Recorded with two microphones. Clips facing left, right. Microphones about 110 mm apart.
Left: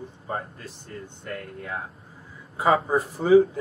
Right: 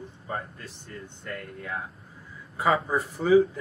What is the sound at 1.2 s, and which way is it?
A man's voice, 35° left (ahead or behind).